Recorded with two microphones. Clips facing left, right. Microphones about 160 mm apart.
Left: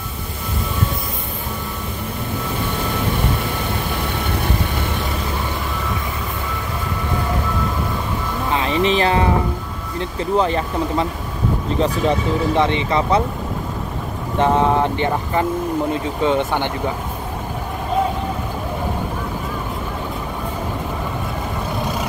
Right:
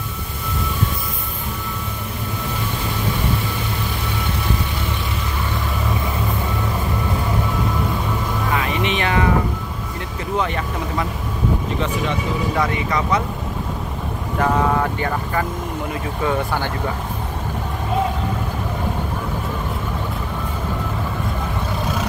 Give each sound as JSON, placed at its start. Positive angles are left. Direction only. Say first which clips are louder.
{"t": 8.5, "sound": "music", "louder": "left 5 dB", "side_deg": 30}
{"t": 10.3, "sound": "speech", "louder": "left 4 dB", "side_deg": 30}
{"t": 14.4, "sound": "speech", "louder": "left 3 dB", "side_deg": 25}